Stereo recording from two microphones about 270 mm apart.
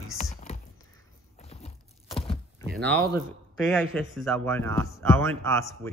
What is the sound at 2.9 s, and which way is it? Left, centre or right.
Speech, centre.